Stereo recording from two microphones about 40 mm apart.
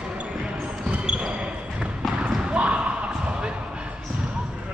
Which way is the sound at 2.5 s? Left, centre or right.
Right.